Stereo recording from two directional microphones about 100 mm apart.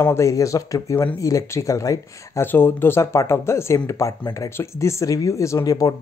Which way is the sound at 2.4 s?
20° left (ahead or behind).